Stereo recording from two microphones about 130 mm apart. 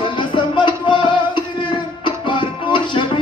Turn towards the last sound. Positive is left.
turn(degrees=40)  # may be behind; listen again after turning